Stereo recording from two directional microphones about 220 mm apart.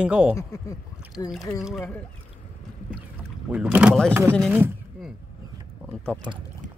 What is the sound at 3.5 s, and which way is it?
Speech, 5° right (ahead or behind).